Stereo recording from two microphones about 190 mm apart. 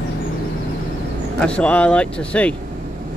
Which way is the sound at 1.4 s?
5° left (ahead or behind).